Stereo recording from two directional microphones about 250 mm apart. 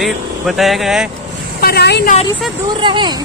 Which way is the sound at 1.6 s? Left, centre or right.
Left.